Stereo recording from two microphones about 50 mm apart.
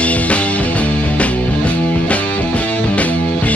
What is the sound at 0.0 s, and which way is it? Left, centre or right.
Music, left.